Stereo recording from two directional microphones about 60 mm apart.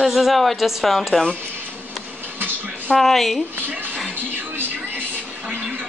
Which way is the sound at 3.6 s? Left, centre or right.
Right.